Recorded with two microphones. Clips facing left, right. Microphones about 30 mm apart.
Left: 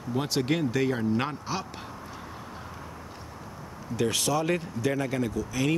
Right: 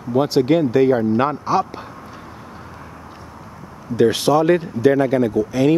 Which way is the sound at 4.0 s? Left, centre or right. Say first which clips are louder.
Right 12 dB; right.